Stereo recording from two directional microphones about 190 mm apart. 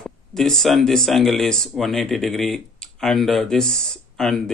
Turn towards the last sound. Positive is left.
turn(degrees=0)  # may be behind; listen again after turning